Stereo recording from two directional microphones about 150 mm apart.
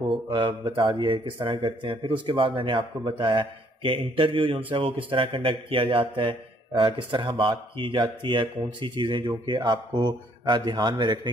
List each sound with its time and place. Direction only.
0.0 s a man's voice: 35° right (ahead or behind)